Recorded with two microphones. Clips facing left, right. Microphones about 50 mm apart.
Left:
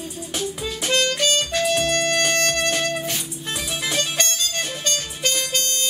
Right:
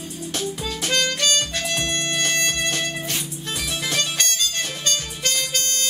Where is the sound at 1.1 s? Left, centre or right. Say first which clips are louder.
Left 2 dB; centre.